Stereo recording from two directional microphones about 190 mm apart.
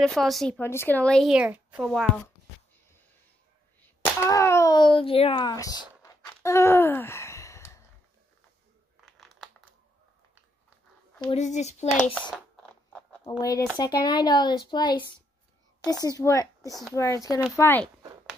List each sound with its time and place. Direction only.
0.0 s speech: centre (ahead or behind)
4.0 s a sound: 15° left (ahead or behind)
9.0 s crumpling: centre (ahead or behind)
11.2 s speech: 35° left (ahead or behind)
11.9 s speech: 5° left (ahead or behind)
13.4 s speech: 20° left (ahead or behind)
16.2 s speech: 15° left (ahead or behind)